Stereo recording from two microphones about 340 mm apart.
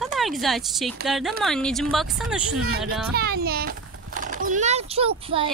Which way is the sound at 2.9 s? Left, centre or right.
Right.